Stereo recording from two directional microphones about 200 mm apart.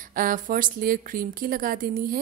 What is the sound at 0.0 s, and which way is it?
A woman's voice, 45° right (ahead or behind).